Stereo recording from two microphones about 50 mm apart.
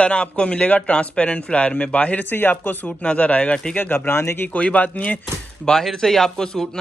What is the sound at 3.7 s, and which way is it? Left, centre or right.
Speech, left.